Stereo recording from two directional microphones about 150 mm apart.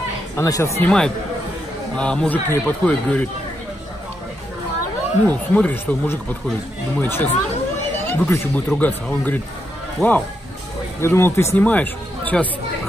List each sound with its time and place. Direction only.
0.4 s speech: 20° left (ahead or behind)
0.8 s speech: 5° left (ahead or behind)
5.2 s speech: 10° left (ahead or behind)